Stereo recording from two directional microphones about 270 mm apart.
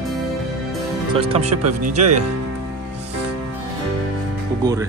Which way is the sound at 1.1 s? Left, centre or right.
Right.